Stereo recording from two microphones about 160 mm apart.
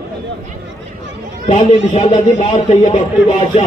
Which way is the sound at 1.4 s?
40° left (ahead or behind).